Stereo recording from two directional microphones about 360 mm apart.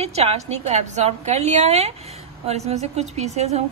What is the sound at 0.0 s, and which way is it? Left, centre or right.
A woman's voice, centre.